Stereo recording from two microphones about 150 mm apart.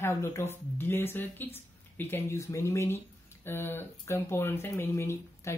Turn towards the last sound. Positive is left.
turn(degrees=20)  # may be behind; listen again after turning